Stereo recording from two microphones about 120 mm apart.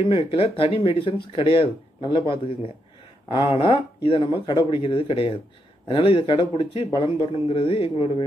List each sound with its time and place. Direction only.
0.0 s speech: 50° left (ahead or behind)